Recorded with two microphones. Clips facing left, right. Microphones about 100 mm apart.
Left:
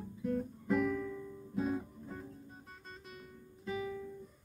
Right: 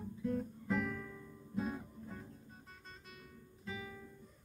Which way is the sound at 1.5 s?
5° left (ahead or behind).